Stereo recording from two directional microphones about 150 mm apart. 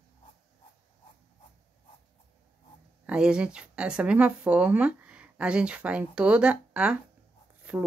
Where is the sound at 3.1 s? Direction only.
5° right (ahead or behind).